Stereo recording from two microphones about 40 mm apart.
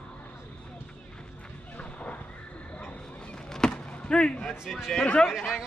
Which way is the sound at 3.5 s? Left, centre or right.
Centre.